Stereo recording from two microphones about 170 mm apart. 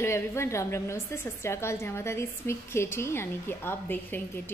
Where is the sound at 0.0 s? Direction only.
15° left (ahead or behind).